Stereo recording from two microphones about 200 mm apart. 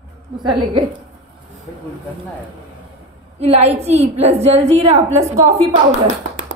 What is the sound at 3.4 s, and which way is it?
A woman's voice, 30° right (ahead or behind).